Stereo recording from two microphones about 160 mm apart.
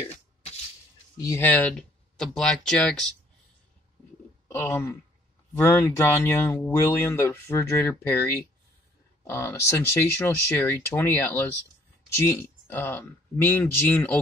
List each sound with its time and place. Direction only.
1.1 s speech: 20° left (ahead or behind)
4.5 s a sound: 15° left (ahead or behind)
5.5 s speech: 15° left (ahead or behind)